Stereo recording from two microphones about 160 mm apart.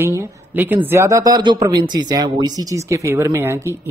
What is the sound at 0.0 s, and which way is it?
A woman's voice, 15° right (ahead or behind).